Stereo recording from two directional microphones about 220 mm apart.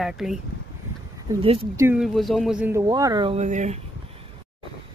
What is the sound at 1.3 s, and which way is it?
Speech, 25° right (ahead or behind).